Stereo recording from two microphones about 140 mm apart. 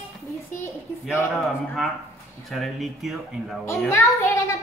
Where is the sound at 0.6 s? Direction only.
20° left (ahead or behind).